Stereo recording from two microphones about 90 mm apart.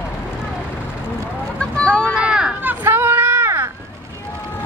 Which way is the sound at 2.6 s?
20° right (ahead or behind).